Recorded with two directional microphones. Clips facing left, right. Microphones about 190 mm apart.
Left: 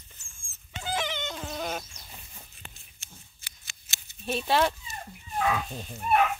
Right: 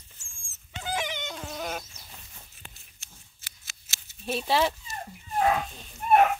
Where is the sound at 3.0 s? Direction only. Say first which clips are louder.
Left 3 dB; centre (ahead or behind).